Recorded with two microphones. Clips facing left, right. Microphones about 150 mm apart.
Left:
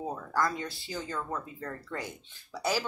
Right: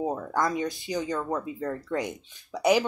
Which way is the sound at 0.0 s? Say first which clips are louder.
Right 4 dB; 20° right (ahead or behind).